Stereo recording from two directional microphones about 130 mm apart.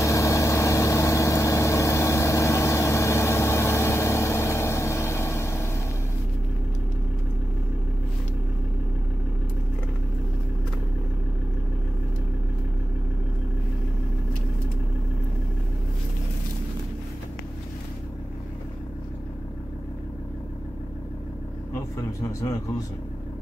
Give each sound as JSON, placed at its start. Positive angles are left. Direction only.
{"t": 0.0, "sound": "vehicle", "side_deg": 25}
{"t": 21.9, "sound": "speech", "side_deg": 25}